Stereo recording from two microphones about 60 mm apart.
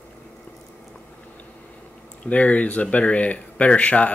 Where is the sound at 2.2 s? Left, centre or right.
Left.